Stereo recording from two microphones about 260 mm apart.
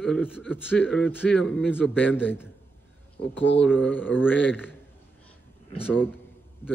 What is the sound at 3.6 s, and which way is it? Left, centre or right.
A man's voice, centre.